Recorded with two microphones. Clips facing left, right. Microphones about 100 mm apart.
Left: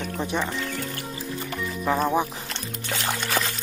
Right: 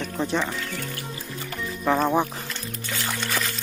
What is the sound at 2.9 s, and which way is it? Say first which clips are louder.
Music: left 2 dB; 20° left (ahead or behind).